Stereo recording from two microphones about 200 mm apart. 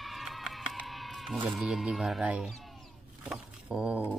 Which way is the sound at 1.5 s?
Centre (ahead or behind).